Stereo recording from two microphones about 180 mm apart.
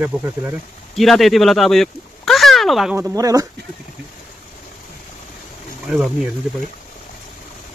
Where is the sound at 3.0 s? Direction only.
20° right (ahead or behind).